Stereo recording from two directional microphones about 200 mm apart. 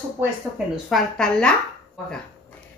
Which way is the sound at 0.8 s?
Centre (ahead or behind).